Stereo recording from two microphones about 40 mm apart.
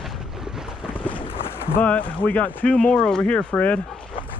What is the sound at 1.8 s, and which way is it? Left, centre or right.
Speech, left.